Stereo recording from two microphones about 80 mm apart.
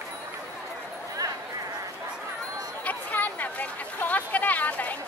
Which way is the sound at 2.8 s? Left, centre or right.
Centre.